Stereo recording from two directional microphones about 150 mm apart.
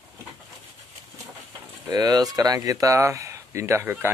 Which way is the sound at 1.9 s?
25° right (ahead or behind).